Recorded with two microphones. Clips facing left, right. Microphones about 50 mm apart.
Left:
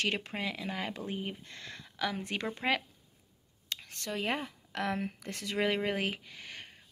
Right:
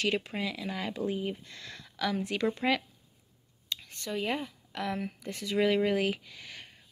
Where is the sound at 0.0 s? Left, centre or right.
Left.